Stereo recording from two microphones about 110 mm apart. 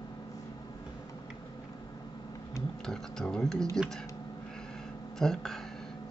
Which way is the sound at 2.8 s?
5° left (ahead or behind).